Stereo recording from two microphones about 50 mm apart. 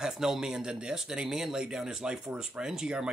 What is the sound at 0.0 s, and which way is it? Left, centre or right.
Speech, centre.